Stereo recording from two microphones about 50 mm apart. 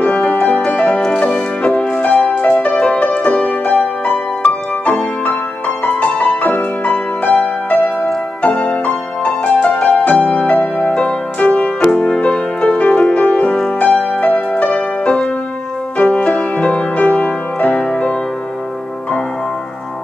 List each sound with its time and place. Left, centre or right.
0.0 s music: left